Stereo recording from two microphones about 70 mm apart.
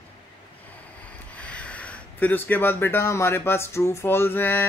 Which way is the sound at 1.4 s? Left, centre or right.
Centre.